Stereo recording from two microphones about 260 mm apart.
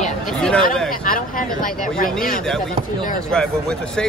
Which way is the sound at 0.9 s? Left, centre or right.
Left.